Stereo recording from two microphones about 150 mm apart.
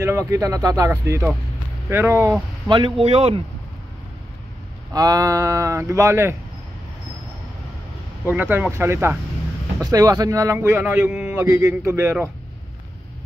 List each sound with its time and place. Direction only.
0.0 s a man's voice: 20° right (ahead or behind)
2.7 s speech: 35° right (ahead or behind)
4.9 s speech: 25° right (ahead or behind)
8.3 s a man's voice: 15° right (ahead or behind)